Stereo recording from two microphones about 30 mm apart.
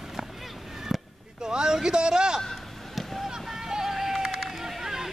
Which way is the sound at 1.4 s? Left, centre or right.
Right.